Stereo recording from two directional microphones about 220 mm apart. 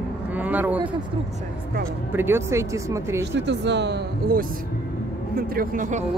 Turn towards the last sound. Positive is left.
turn(degrees=-35)  # may be behind; listen again after turning